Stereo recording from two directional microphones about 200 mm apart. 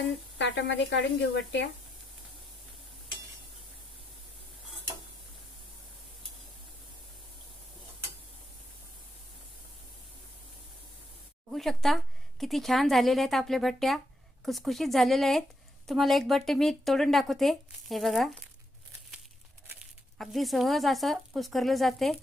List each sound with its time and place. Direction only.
0.0 s speech: 65° left (ahead or behind)
11.5 s speech: centre (ahead or behind)
19.8 s speech: centre (ahead or behind)